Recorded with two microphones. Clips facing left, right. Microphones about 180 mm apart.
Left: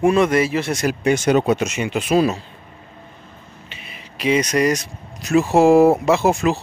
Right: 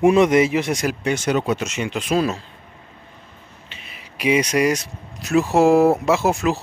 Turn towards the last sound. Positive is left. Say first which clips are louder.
# left 2 dB
turn(degrees=-5)  # may be behind; listen again after turning